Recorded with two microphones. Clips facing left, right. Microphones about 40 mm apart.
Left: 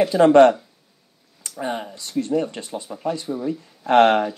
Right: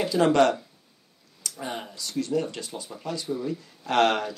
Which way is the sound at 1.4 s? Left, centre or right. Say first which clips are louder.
Left 1 dB; left.